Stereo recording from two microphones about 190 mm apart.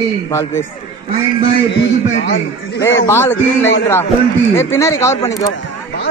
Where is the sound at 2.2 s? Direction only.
60° left (ahead or behind).